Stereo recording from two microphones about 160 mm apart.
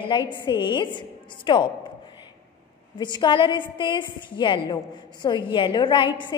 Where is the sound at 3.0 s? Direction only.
30° left (ahead or behind).